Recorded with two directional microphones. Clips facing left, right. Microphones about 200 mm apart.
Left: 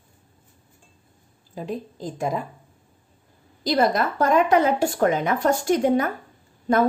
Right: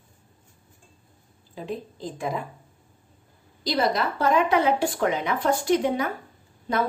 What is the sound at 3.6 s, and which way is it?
Speech, 50° left (ahead or behind).